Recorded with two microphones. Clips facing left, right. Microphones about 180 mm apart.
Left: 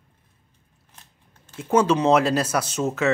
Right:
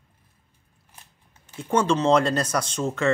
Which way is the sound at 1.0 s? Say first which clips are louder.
Right 1 dB; 10° right (ahead or behind).